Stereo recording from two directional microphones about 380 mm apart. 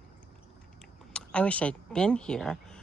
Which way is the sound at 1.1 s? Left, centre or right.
Centre.